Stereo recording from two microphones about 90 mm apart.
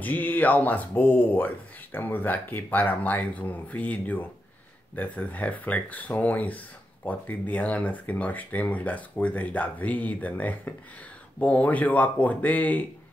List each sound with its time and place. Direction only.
0.0 s speech: 20° left (ahead or behind)